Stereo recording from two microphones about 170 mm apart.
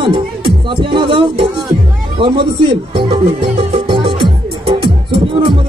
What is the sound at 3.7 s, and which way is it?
Music, 30° right (ahead or behind).